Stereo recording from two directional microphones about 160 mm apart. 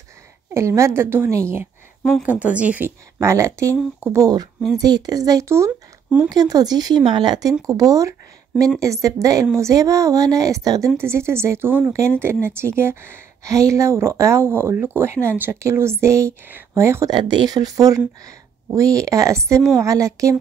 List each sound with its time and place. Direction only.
0.5 s speech: 15° right (ahead or behind)
6.2 s speech: 25° right (ahead or behind)